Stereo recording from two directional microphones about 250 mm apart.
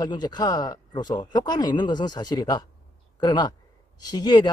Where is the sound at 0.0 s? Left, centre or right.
Centre.